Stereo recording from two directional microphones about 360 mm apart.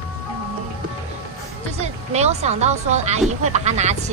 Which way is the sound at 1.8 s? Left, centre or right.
Centre.